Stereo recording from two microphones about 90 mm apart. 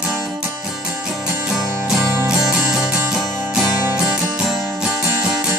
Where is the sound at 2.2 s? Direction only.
10° right (ahead or behind).